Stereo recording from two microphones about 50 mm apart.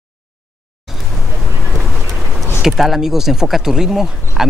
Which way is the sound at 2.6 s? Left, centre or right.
Centre.